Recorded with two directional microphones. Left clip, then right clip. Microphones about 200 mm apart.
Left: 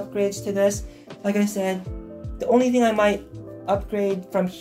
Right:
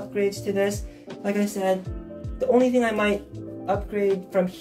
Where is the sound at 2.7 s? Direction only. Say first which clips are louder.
Left 3 dB; 25° left (ahead or behind).